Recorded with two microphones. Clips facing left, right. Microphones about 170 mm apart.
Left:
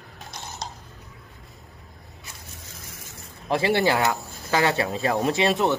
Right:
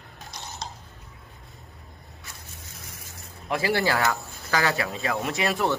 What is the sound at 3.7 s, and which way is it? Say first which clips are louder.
Speech: left 2 dB; 20° left (ahead or behind).